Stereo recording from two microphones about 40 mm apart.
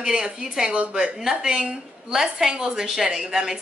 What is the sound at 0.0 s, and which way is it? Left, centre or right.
A woman's voice, centre.